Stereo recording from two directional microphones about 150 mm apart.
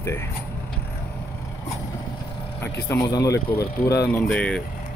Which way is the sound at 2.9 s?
20° left (ahead or behind).